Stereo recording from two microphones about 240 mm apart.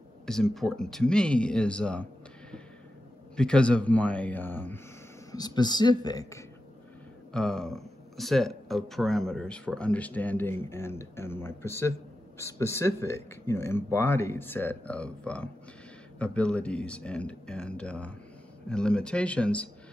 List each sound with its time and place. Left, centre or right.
0.3 s speech: centre
3.3 s speech: centre
7.3 s speech: centre